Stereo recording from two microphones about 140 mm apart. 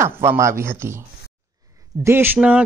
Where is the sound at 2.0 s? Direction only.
15° right (ahead or behind).